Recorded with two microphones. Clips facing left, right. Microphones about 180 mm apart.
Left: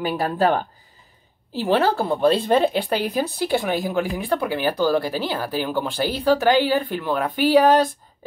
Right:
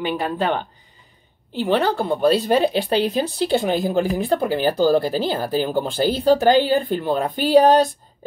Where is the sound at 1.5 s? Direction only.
Centre (ahead or behind).